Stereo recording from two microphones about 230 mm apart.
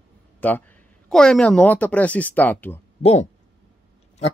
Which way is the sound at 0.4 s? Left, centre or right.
Centre.